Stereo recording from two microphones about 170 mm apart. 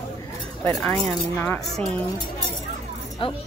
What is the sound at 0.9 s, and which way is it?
A woman's voice, 10° left (ahead or behind).